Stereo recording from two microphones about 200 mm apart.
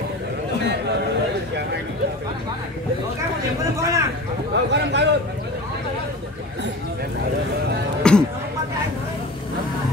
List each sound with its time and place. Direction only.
3.7 s speech: 15° right (ahead or behind)
4.6 s a man's voice: 60° right (ahead or behind)
8.0 s a sound: 5° left (ahead or behind)